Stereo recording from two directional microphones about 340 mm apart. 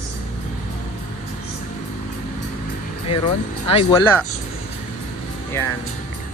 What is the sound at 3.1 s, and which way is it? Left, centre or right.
Speech, centre.